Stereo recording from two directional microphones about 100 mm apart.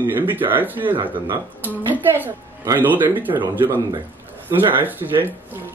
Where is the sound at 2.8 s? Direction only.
20° right (ahead or behind).